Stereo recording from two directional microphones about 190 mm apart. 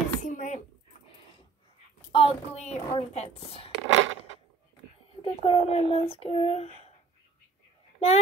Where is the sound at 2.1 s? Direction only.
30° left (ahead or behind).